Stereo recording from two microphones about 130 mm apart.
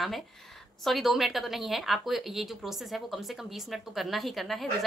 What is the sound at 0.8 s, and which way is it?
Speech, centre (ahead or behind).